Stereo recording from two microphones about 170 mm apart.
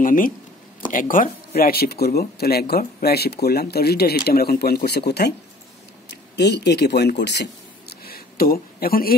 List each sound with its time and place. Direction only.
0.0 s speech: 55° left (ahead or behind); by 5.3 s 75° left (ahead or behind)
6.0 s speech: 85° left
8.0 s a sound: 60° left (ahead or behind)